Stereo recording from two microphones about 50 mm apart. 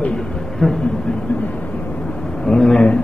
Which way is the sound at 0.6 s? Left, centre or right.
Centre.